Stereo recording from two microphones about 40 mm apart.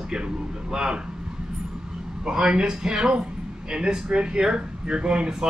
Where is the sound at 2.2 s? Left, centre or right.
Right.